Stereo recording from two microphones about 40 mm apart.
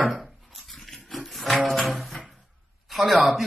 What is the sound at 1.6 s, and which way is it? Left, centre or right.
Music, centre.